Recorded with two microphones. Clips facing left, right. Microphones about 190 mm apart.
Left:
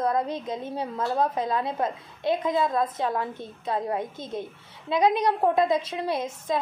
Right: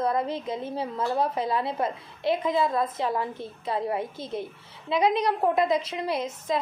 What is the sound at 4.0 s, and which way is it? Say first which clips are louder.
Speech: even; 20° left (ahead or behind).